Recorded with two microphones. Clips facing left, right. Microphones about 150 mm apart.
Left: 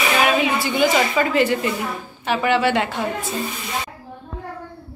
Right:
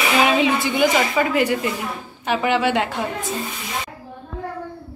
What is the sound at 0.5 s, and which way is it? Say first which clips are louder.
A woman's voice: even; 20° right (ahead or behind).